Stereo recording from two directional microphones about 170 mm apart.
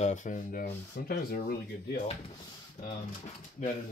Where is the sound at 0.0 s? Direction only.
45° left (ahead or behind).